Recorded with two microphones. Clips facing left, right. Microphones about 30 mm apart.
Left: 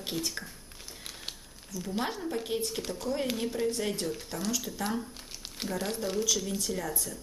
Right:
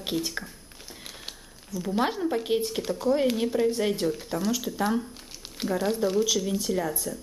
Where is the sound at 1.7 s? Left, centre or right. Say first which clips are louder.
Right 7 dB; centre.